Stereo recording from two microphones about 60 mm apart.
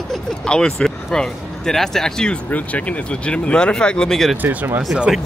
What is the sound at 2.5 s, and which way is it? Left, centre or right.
Speech, left.